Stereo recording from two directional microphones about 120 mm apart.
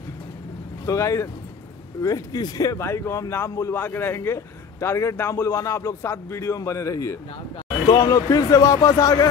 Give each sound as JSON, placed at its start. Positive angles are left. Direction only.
{"t": 0.8, "sound": "speech", "side_deg": 25}